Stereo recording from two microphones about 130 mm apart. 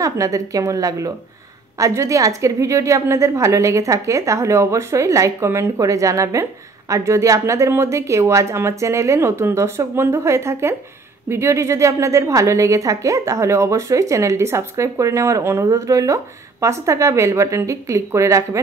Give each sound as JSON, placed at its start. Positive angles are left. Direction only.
{"t": 0.0, "sound": "a woman's voice", "side_deg": -25}